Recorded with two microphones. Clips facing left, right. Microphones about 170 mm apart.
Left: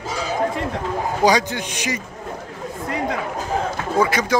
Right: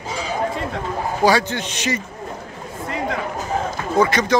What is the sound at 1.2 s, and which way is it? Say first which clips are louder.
Speech: right 1 dB; 15° left (ahead or behind).